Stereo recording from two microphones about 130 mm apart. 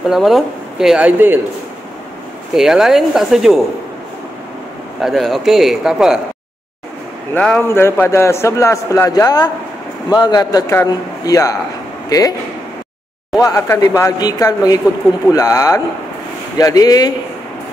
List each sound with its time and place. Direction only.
0.1 s speech: centre (ahead or behind)
2.5 s speech: 5° right (ahead or behind)
5.0 s speech: centre (ahead or behind)
7.3 s a man's voice: 10° left (ahead or behind)
7.6 s a man's voice: 20° left (ahead or behind)
13.4 s a man's voice: 25° left (ahead or behind)